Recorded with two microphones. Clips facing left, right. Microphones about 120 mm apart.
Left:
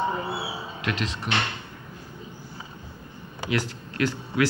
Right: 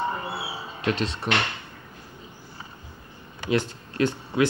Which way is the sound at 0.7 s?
30° right (ahead or behind).